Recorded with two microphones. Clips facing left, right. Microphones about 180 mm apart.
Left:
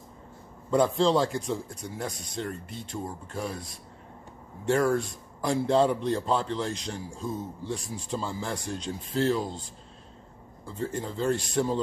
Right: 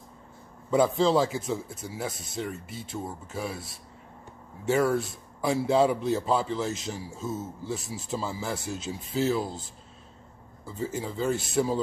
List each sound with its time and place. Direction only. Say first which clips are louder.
0.7 s a man's voice: even; 5° right (ahead or behind)